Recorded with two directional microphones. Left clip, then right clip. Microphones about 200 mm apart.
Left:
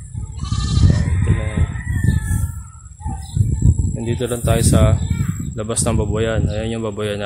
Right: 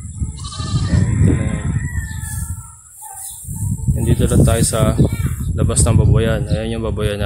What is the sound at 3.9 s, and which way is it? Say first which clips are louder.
Speech: right 6 dB; centre (ahead or behind).